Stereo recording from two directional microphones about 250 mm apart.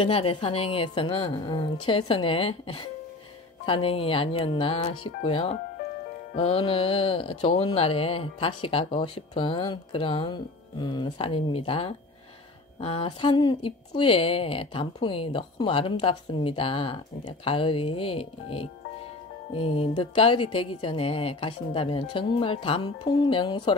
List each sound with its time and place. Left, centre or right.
0.0 s a woman's voice: left